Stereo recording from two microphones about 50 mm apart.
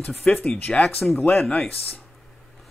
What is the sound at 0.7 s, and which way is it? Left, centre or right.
Speech, centre.